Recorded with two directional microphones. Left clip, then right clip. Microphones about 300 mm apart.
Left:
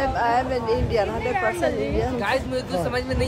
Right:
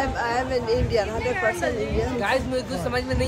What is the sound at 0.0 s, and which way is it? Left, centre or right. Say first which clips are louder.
Speech: left 3 dB; centre.